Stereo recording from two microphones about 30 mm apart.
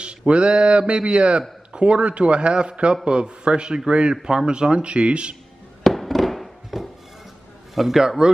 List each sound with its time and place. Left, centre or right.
0.0 s a man's voice: right
5.9 s music: centre
7.7 s a man's voice: centre
8.2 s speech: right